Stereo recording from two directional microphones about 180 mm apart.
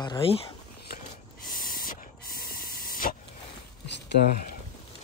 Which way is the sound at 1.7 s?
50° left (ahead or behind).